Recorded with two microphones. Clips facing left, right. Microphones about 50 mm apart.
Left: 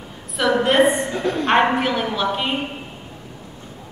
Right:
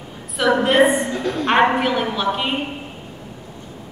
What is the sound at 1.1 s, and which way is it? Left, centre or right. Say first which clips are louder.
Speech: left 1 dB; centre.